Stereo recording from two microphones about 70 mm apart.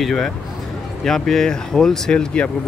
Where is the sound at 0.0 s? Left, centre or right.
Centre.